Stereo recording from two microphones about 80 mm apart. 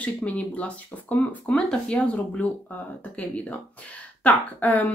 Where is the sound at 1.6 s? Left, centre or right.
Centre.